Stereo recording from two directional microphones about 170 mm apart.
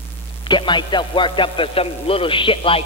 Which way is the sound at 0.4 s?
30° left (ahead or behind).